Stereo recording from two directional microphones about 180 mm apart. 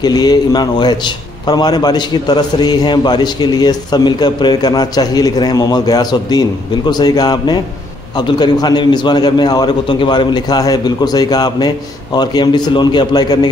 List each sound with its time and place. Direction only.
0.0 s a man's voice: 20° left (ahead or behind)